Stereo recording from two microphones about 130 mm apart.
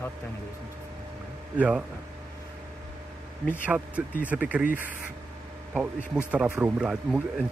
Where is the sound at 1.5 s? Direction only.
10° right (ahead or behind).